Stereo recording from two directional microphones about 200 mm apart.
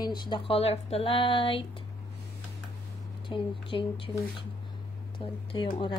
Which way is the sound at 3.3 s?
25° left (ahead or behind).